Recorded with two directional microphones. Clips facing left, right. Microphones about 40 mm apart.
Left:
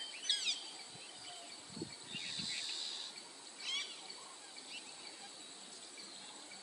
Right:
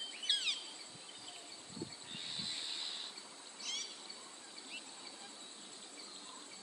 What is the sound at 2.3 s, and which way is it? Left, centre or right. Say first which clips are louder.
Vehicle: right 2 dB; right.